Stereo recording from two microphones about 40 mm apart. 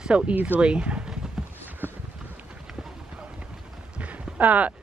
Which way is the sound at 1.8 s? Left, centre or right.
Right.